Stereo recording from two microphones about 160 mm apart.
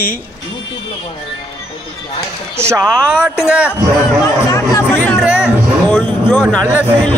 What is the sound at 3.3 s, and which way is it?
Speech, 5° right (ahead or behind).